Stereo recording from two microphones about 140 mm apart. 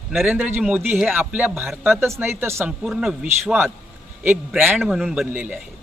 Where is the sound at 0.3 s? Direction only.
10° right (ahead or behind).